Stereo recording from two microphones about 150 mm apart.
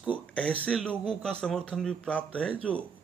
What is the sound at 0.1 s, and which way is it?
A man's voice, 10° left (ahead or behind).